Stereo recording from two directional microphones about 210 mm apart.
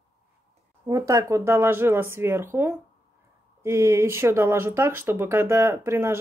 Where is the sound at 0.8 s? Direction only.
15° right (ahead or behind).